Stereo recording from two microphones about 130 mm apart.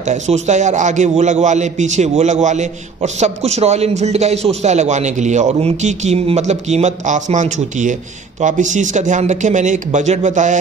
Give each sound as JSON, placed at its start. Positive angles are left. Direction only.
{"t": 0.0, "sound": "a man's voice", "side_deg": -65}